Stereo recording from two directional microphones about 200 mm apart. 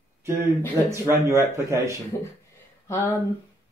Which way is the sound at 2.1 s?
10° left (ahead or behind).